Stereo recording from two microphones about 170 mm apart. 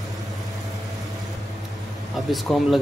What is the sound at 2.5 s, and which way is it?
Speech, centre (ahead or behind).